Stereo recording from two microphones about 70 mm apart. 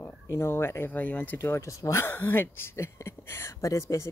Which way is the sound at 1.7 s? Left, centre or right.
Left.